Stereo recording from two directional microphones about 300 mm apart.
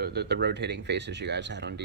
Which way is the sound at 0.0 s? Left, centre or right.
Right.